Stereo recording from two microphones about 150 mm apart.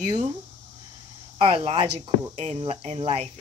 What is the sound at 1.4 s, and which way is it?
Speech, 35° right (ahead or behind).